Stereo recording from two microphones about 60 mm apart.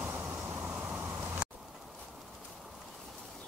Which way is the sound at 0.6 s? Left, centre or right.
Right.